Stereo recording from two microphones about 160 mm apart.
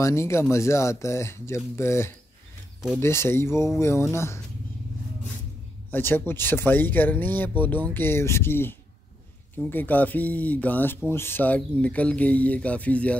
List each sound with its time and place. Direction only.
0.0 s speech: 15° left (ahead or behind)
5.9 s speech: 10° left (ahead or behind)